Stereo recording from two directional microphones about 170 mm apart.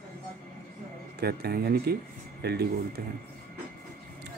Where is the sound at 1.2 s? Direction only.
70° right (ahead or behind).